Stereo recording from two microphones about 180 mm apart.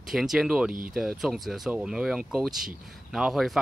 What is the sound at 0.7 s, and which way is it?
Speech, 50° right (ahead or behind).